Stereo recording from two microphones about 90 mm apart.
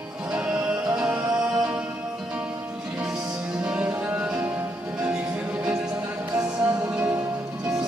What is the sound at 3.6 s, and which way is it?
Music, 15° right (ahead or behind).